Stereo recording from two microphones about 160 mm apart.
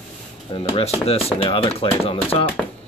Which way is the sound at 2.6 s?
Centre (ahead or behind).